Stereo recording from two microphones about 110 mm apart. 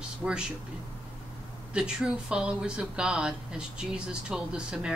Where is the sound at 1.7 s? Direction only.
5° right (ahead or behind).